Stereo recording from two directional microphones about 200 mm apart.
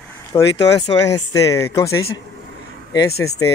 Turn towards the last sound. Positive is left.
turn(degrees=15)  # may be behind; listen again after turning